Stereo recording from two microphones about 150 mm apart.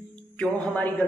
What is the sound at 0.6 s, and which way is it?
Speech, 10° left (ahead or behind).